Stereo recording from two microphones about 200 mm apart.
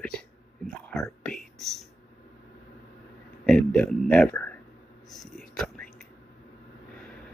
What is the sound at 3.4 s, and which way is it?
A man's voice, 5° left (ahead or behind).